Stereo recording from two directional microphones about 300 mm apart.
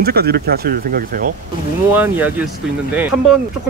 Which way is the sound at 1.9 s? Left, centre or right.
Centre.